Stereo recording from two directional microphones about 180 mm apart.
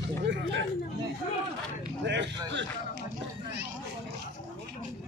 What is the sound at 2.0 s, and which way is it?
Speech, 75° right (ahead or behind).